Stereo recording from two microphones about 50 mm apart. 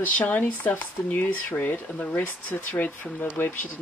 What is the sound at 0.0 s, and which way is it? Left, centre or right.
Speech, left.